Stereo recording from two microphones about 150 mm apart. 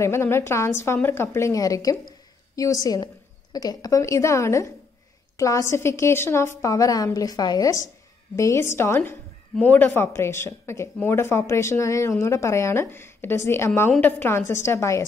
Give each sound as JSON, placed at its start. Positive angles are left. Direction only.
{"t": 0.0, "sound": "a woman's voice", "side_deg": 15}